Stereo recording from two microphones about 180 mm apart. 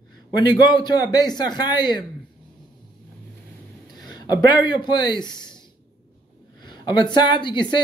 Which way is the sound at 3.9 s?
20° left (ahead or behind).